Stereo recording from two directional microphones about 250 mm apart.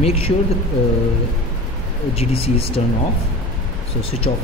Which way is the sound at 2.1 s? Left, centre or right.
Left.